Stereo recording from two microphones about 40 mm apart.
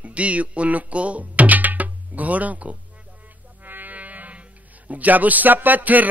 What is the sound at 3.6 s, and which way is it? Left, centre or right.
Music, right.